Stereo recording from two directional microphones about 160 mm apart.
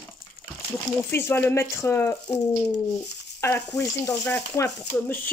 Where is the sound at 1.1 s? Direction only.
15° left (ahead or behind).